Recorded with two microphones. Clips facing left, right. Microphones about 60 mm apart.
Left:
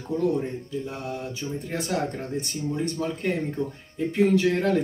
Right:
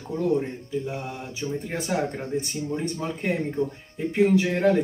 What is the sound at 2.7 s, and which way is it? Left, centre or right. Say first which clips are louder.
Speech: left 1 dB; centre.